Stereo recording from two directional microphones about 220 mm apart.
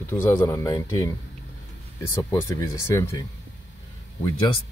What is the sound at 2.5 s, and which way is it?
Speech, 15° left (ahead or behind).